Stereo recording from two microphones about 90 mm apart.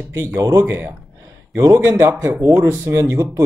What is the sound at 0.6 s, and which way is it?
Speech, 20° right (ahead or behind).